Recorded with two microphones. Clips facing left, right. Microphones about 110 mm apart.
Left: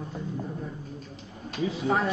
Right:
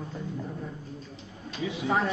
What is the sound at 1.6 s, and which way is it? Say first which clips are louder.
Speech: left 3 dB; 35° left (ahead or behind).